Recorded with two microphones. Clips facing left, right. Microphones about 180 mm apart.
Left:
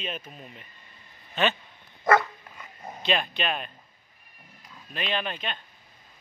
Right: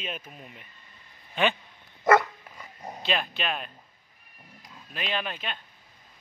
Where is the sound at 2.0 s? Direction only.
25° right (ahead or behind).